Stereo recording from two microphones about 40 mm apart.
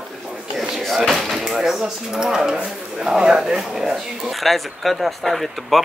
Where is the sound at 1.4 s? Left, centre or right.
Centre.